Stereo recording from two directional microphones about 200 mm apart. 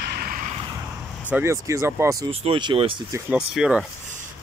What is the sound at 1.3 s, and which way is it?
Speech, 15° right (ahead or behind).